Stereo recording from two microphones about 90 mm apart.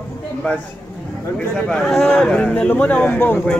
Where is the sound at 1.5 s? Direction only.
5° left (ahead or behind); by 3.4 s 25° left (ahead or behind).